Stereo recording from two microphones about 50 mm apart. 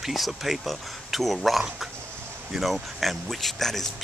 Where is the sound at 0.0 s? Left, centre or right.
Centre.